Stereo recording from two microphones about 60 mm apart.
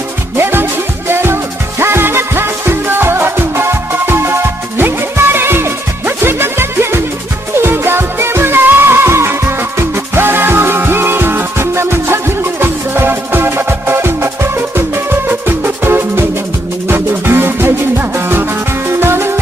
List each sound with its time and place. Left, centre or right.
0.4 s music: right